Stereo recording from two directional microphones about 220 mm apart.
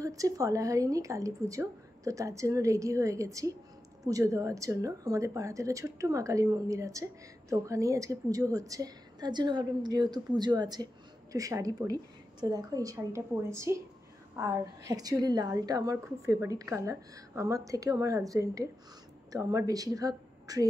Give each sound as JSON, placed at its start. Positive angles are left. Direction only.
{"t": 0.0, "sound": "a woman's voice", "side_deg": -15}